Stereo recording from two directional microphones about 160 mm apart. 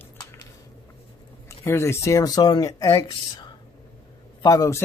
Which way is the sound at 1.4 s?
15° left (ahead or behind).